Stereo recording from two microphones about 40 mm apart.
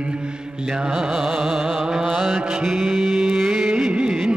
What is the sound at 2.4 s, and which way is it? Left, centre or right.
Mantra, centre.